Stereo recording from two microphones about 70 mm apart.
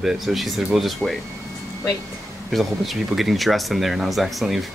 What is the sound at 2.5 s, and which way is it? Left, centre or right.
Speech, centre.